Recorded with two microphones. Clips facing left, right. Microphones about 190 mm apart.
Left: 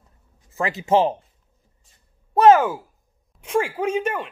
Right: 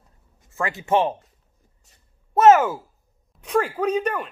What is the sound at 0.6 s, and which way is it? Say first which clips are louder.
Speech: left 2 dB; 20° left (ahead or behind).